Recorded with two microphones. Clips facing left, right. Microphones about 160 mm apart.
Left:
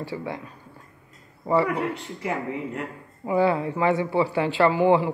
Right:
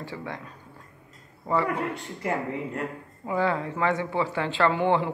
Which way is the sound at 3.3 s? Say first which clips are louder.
Left 4 dB; 15° left (ahead or behind).